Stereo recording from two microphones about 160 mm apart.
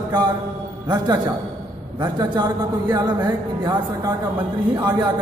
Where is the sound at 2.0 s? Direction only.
25° right (ahead or behind).